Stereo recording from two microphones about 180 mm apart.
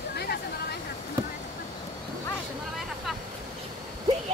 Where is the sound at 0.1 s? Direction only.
60° left (ahead or behind).